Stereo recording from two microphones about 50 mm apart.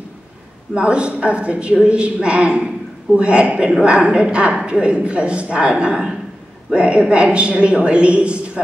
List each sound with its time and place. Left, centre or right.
0.7 s a man's voice: right